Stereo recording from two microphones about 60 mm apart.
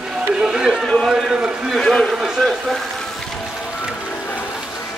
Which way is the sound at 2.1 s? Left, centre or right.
Centre.